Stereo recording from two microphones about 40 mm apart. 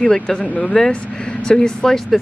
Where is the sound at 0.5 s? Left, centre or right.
Left.